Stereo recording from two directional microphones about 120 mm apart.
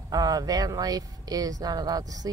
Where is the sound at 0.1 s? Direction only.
30° right (ahead or behind).